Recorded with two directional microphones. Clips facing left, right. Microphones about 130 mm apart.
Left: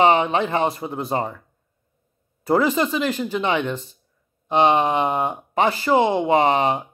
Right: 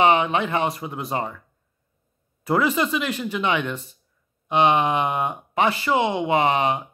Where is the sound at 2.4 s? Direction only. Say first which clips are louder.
Left 2 dB; 35° left (ahead or behind).